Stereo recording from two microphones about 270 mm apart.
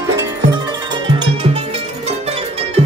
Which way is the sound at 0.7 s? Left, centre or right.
Centre.